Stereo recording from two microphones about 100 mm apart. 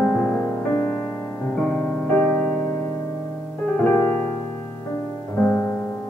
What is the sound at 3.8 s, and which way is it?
Music, 15° left (ahead or behind).